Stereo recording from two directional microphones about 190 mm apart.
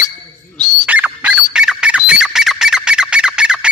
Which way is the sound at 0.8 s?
10° right (ahead or behind).